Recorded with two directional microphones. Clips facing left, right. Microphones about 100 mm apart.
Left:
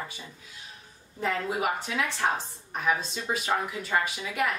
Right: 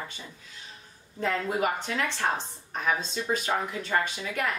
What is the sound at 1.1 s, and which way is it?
Speech, 5° left (ahead or behind).